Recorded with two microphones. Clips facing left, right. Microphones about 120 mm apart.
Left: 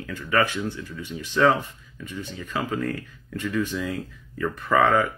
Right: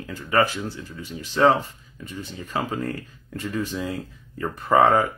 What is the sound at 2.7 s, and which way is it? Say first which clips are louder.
Speech: left 1 dB; 30° right (ahead or behind).